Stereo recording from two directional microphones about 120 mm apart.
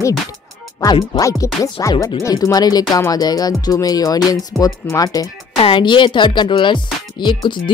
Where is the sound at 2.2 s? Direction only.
30° left (ahead or behind).